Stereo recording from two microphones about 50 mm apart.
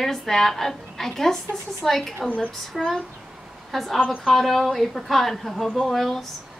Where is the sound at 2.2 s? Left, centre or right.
Left.